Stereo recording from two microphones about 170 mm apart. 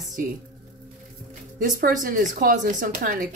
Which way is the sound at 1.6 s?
55° right (ahead or behind).